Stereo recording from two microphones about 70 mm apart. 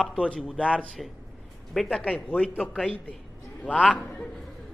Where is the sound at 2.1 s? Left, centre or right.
Centre.